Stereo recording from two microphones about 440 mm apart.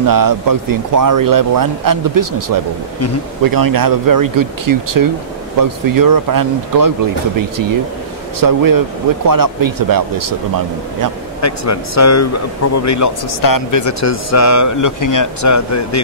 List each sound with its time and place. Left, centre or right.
0.0 s speech: right
8.4 s speech: right
11.4 s speech: left